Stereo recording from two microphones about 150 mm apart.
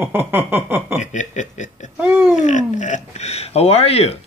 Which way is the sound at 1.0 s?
50° left (ahead or behind).